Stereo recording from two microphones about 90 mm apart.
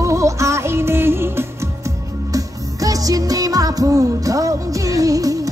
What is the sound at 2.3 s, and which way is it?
Music, 40° right (ahead or behind).